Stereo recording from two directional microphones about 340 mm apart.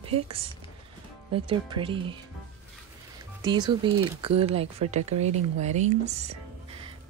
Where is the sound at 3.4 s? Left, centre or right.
Centre.